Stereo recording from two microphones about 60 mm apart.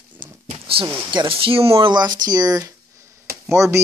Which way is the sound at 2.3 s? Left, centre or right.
Right.